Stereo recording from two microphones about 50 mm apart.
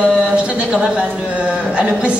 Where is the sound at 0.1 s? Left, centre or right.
Centre.